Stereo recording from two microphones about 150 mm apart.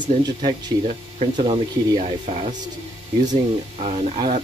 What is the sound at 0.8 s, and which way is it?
Speech, 50° right (ahead or behind).